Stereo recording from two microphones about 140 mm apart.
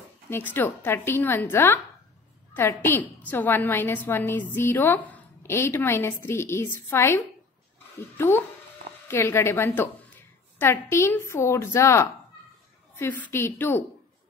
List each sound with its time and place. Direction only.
0.3 s a woman's voice: 15° left (ahead or behind)
8.2 s a woman's voice: 15° left (ahead or behind)